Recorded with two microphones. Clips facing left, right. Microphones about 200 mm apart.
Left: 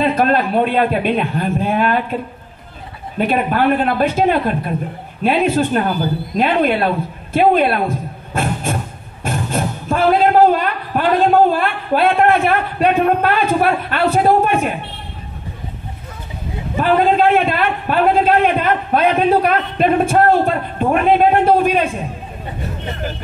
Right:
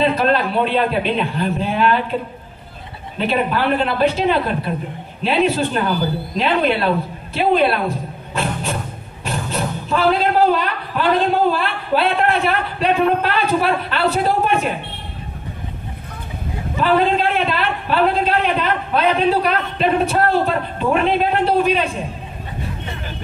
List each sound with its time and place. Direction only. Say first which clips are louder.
0.0 s a man's voice: left 1 dB; 50° left (ahead or behind)
3.2 s a man's voice: left 3 dB; 50° left (ahead or behind)
8.3 s vehicle: left 3 dB; 50° left (ahead or behind)
9.2 s a sound: left 3 dB; 50° left (ahead or behind)
11.5 s a man's voice: left 2 dB; 50° left (ahead or behind)
16.7 s a man's voice: left 2 dB; 50° left (ahead or behind)